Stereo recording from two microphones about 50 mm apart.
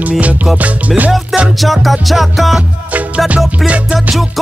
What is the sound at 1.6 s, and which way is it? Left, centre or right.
Music, centre.